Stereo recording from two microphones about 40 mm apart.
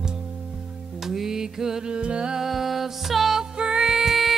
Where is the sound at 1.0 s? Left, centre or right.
Centre.